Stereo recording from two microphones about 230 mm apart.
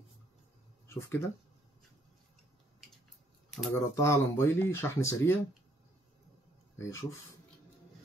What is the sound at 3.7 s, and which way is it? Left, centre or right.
Speech, centre.